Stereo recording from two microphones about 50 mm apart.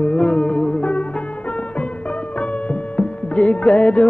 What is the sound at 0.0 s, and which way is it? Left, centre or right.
Music of bollywood, left.